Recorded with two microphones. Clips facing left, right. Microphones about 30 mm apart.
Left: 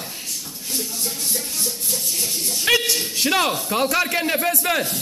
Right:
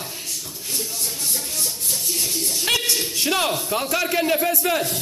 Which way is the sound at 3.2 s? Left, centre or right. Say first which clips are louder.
Left 3 dB; centre.